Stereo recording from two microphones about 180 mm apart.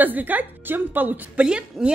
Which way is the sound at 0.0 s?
10° right (ahead or behind).